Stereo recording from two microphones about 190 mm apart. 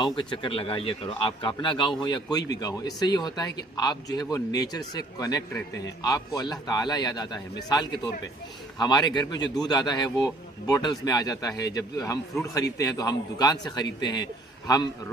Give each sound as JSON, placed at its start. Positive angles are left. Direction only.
{"t": 0.0, "sound": "speech", "side_deg": 25}
{"t": 8.7, "sound": "speech", "side_deg": 20}